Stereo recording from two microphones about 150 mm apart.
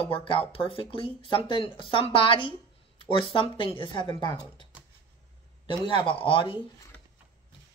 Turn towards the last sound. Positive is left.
turn(degrees=35)  # may be behind; listen again after turning